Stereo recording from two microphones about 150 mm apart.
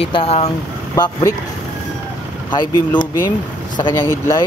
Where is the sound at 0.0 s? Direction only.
40° left (ahead or behind).